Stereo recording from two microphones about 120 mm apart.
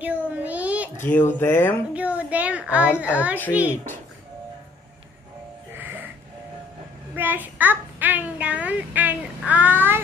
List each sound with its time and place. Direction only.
0.0 s a sound: 15° right (ahead or behind)
0.9 s speech: 20° left (ahead or behind)
2.0 s a sound: 10° right (ahead or behind)
3.0 s a child's voice: 10° right (ahead or behind)
5.7 s music: 15° right (ahead or behind)
7.2 s a child's voice: 15° right (ahead or behind)